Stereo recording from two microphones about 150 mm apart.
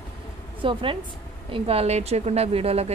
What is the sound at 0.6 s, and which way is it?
A woman's voice, 35° right (ahead or behind).